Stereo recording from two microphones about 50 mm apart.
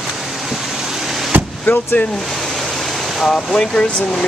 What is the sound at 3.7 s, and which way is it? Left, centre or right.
Speech, centre.